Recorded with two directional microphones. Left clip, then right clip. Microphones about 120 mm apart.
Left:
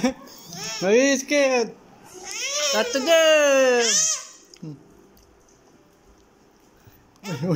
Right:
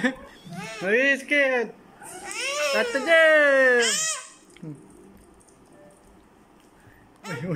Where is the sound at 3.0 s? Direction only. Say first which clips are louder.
Even; 15° left (ahead or behind).